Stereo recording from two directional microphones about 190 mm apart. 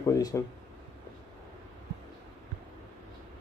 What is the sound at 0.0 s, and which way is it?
Speech, 20° left (ahead or behind).